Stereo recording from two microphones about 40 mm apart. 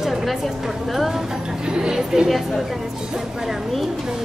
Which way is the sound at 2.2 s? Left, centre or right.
Centre.